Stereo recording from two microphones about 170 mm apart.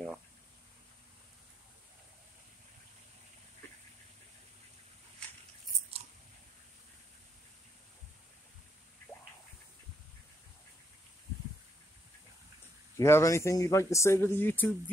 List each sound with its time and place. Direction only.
12.9 s a man's voice: 15° left (ahead or behind)